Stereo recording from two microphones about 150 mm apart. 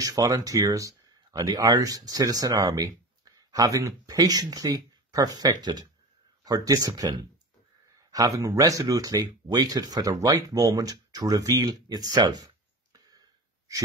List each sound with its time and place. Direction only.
0.0 s speech: 20° right (ahead or behind)